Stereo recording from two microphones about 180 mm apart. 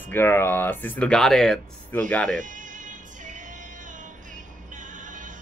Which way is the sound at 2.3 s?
45° right (ahead or behind).